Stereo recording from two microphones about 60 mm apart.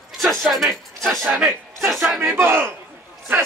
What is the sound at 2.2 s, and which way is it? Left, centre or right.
Speech, right.